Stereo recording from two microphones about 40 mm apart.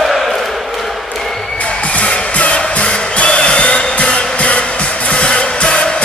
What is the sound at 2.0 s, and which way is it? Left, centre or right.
Music, left.